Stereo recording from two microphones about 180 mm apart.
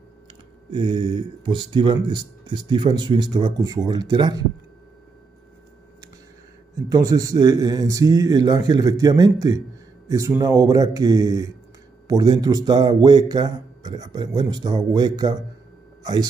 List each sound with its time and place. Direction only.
0.7 s speech: 25° right (ahead or behind)
6.9 s speech: 20° right (ahead or behind)